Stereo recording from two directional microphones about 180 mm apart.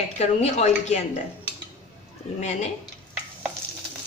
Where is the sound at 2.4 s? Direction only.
40° left (ahead or behind).